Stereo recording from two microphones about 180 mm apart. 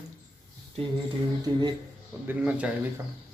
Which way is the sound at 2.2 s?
10° right (ahead or behind).